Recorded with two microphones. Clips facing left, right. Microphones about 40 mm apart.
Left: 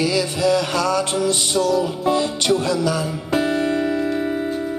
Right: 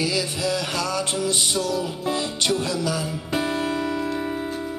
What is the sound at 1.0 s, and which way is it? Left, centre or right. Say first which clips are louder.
Music: left 4 dB; left.